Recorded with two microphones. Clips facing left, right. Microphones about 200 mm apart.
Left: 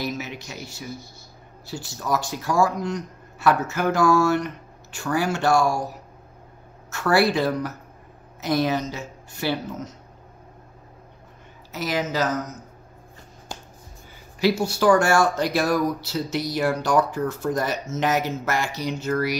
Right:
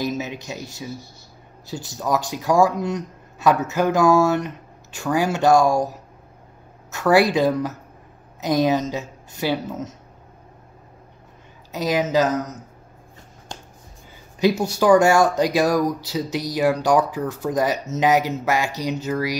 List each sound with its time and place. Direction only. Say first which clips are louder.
0.0 s a man's voice: right 4 dB; 20° right (ahead or behind)
6.9 s speech: right 3 dB; 15° right (ahead or behind)
11.7 s speech: right 6 dB; 20° right (ahead or behind)
14.6 s speech: right 4 dB; 15° right (ahead or behind)